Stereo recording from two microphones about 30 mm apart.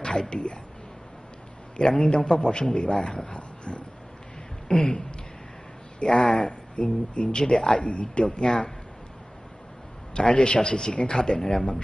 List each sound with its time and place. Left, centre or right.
0.0 s a sound: left
1.8 s speech: left
2.7 s speech: left
3.3 s a sound: left
4.6 s a sound: left
5.9 s speech: left
6.8 s speech: left
7.3 s speech: left
7.8 s speech: left
8.5 s speech: left
10.1 s speech: left